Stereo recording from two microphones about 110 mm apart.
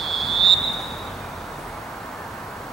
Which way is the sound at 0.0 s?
Centre (ahead or behind).